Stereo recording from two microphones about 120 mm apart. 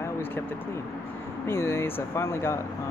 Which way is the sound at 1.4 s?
20° left (ahead or behind).